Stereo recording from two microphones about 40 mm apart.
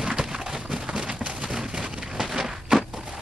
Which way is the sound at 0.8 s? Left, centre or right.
Right.